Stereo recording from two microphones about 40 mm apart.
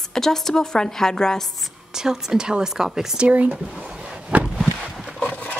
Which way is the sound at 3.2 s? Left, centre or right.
Right.